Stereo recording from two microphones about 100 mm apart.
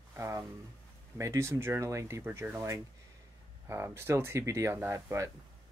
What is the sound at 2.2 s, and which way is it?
Speech, 20° right (ahead or behind).